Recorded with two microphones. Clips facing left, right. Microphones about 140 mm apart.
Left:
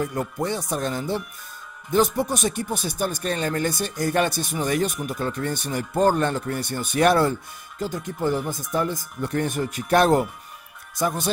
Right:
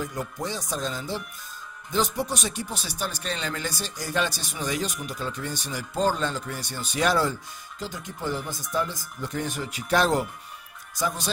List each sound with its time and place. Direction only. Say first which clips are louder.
0.0 s speech: left 5 dB; 60° left (ahead or behind)